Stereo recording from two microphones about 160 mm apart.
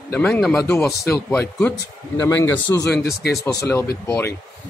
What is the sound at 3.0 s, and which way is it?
Speech, 75° left (ahead or behind).